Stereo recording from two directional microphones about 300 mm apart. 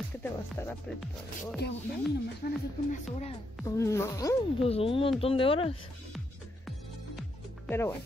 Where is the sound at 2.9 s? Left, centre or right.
Left.